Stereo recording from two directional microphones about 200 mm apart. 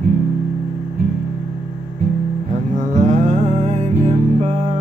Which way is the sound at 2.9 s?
35° right (ahead or behind).